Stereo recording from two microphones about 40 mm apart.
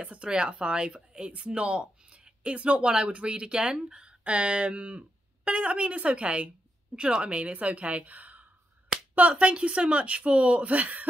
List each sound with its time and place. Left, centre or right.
0.0 s speech: right
0.3 s a woman's voice: right
9.3 s speech: right